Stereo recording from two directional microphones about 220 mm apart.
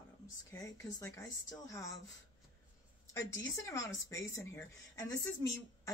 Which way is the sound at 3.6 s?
15° left (ahead or behind).